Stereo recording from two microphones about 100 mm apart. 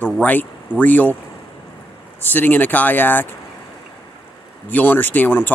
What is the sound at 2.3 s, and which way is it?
Speech, 20° left (ahead or behind).